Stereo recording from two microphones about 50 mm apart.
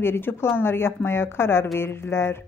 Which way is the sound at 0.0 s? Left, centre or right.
Left.